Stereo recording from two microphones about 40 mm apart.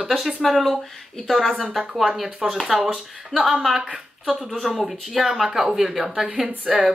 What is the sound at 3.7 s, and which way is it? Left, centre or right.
Speech, right.